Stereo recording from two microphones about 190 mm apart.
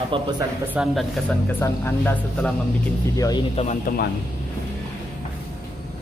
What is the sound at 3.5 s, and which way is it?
Speech, 35° left (ahead or behind).